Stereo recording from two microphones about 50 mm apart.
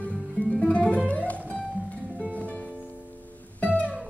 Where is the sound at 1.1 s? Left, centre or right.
Left.